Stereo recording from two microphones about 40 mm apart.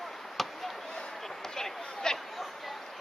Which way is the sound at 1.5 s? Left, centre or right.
Centre.